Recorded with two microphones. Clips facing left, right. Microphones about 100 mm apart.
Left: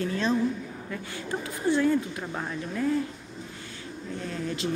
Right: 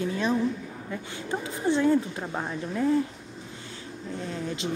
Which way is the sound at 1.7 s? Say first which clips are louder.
Right 1 dB; 25° right (ahead or behind).